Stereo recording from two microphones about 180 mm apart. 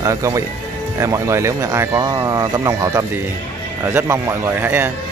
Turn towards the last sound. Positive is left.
turn(degrees=-10)  # may be behind; listen again after turning